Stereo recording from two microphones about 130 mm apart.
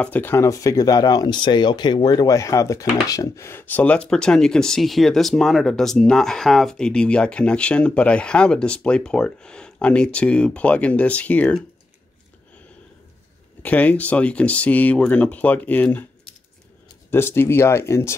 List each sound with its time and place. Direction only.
0.0 s speech: 15° left (ahead or behind)
13.6 s speech: 10° left (ahead or behind)
17.1 s speech: 20° left (ahead or behind)